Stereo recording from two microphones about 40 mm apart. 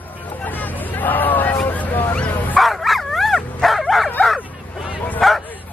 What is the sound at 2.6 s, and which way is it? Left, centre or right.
Dog, centre.